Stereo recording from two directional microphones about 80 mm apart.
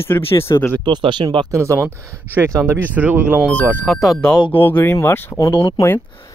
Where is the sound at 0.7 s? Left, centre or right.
Right.